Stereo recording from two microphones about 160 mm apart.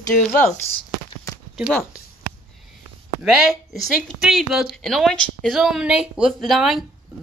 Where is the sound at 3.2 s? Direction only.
Centre (ahead or behind).